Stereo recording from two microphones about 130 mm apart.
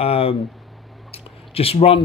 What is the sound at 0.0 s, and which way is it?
Speech, 50° left (ahead or behind).